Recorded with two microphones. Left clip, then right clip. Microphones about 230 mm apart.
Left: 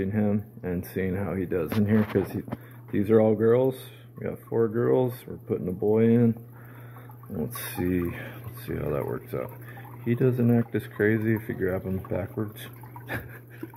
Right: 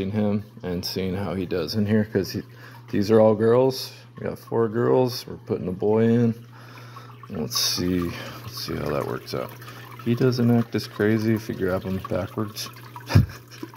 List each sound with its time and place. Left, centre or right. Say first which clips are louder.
0.0 s speech: right 2 dB; centre
7.7 s speech: right 3 dB; centre